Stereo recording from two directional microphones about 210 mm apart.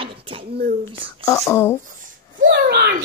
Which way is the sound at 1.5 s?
10° left (ahead or behind).